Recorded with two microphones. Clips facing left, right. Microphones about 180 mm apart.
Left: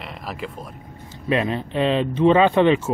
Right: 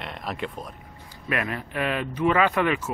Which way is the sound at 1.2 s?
25° left (ahead or behind).